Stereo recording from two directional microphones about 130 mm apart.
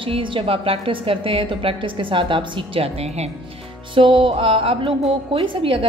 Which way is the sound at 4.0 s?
40° right (ahead or behind).